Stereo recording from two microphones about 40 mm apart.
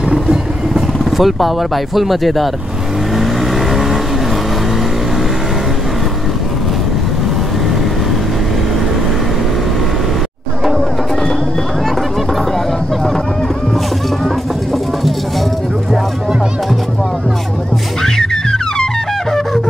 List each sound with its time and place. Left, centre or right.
0.1 s vehicle: centre
1.1 s speech: centre
3.2 s vehicle: centre
14.2 s a sound: centre
18.0 s music: centre
19.3 s wind instrument: centre